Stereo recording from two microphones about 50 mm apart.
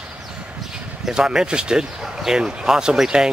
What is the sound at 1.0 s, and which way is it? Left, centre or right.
Speech, centre.